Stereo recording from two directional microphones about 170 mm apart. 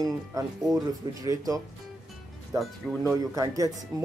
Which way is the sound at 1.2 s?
20° right (ahead or behind).